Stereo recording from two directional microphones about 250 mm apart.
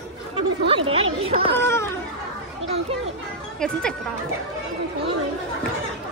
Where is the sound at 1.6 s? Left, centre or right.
Centre.